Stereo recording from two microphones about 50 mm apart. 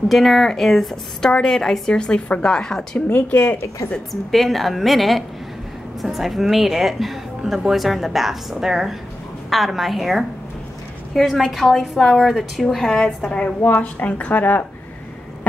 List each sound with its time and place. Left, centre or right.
0.1 s speech: centre; by 2.5 s left
2.5 s speech: centre
3.1 s a woman's voice: left
4.1 s speech: centre
13.7 s a woman's voice: left